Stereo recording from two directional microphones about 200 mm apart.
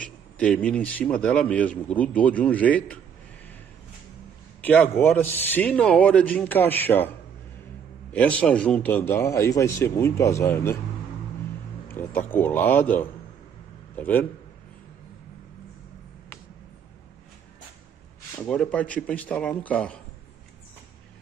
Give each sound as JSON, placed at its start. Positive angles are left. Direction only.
{"t": 0.0, "sound": "a man's voice", "side_deg": 5}
{"t": 4.6, "sound": "a man's voice", "side_deg": 10}
{"t": 8.1, "sound": "a man's voice", "side_deg": 5}
{"t": 11.9, "sound": "a man's voice", "side_deg": 10}
{"t": 18.4, "sound": "a man's voice", "side_deg": 5}